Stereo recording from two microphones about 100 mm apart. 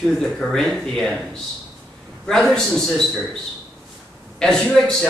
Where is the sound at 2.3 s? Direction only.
5° left (ahead or behind).